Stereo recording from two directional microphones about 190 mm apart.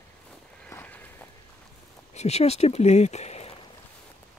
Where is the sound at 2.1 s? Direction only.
35° left (ahead or behind).